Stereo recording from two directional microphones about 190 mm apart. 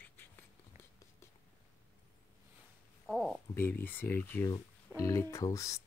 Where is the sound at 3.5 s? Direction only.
10° left (ahead or behind).